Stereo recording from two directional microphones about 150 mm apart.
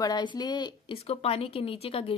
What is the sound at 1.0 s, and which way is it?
Speech, 40° left (ahead or behind).